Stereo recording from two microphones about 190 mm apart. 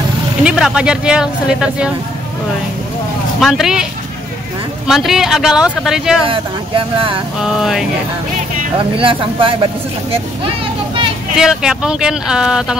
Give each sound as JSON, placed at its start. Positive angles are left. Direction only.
{"t": 0.4, "sound": "speech", "side_deg": -5}
{"t": 3.3, "sound": "speech", "side_deg": 0}
{"t": 4.8, "sound": "speech", "side_deg": 0}
{"t": 6.2, "sound": "speech", "side_deg": -30}
{"t": 7.4, "sound": "speech", "side_deg": 0}
{"t": 8.7, "sound": "speech", "side_deg": -30}
{"t": 11.3, "sound": "speech", "side_deg": -5}